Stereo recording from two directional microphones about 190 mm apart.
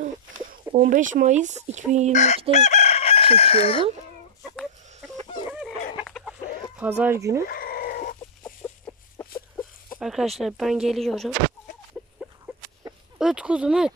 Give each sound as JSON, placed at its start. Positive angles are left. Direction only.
{"t": 0.0, "sound": "speech", "side_deg": -45}
{"t": 2.1, "sound": "chicken", "side_deg": 35}
{"t": 4.4, "sound": "a sound", "side_deg": 0}
{"t": 6.0, "sound": "chicken", "side_deg": 0}
{"t": 7.0, "sound": "speech", "side_deg": -15}
{"t": 7.4, "sound": "chicken", "side_deg": 50}
{"t": 9.2, "sound": "a sound", "side_deg": 10}
{"t": 9.9, "sound": "speech", "side_deg": 0}
{"t": 12.2, "sound": "a sound", "side_deg": -5}
{"t": 13.2, "sound": "speech", "side_deg": -5}